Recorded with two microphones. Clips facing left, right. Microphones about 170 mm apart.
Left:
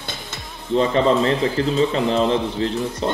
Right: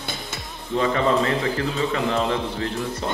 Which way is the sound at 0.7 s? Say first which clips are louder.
Left 3 dB; 25° left (ahead or behind).